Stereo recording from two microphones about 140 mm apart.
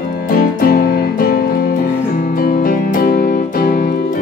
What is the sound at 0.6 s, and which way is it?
Music, 90° left.